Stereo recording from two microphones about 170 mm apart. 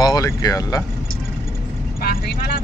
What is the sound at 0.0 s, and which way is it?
Speech, 25° left (ahead or behind).